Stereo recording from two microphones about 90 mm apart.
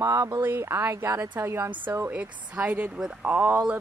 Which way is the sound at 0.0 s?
35° right (ahead or behind).